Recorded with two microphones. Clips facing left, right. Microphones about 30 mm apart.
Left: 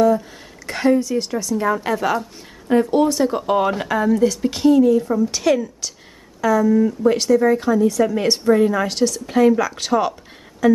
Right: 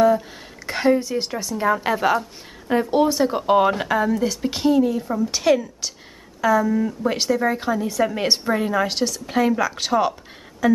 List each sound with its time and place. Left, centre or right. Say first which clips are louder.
0.7 s a woman's voice: left 2 dB; centre